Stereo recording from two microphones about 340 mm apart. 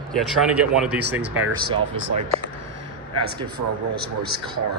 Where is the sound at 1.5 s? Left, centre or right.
Right.